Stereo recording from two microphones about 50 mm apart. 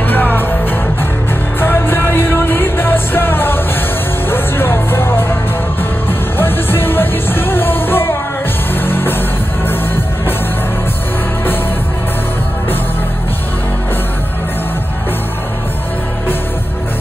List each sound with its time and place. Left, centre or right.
0.1 s music: left
1.6 s music: left